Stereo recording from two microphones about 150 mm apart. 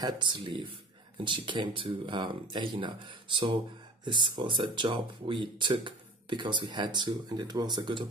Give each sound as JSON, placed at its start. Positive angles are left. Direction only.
{"t": 0.0, "sound": "speech", "side_deg": -30}